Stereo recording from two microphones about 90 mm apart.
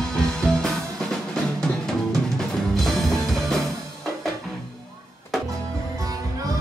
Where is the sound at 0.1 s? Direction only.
5° left (ahead or behind).